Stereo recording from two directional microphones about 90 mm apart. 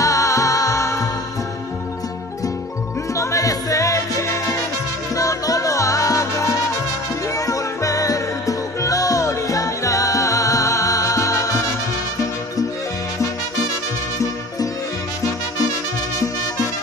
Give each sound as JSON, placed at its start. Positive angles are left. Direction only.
{"t": 0.0, "sound": "music", "side_deg": 40}
{"t": 3.2, "sound": "music", "side_deg": 35}